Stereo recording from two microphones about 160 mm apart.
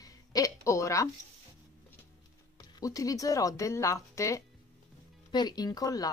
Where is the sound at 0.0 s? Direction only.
20° left (ahead or behind).